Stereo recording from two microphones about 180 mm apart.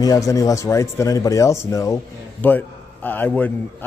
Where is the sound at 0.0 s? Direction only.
20° left (ahead or behind).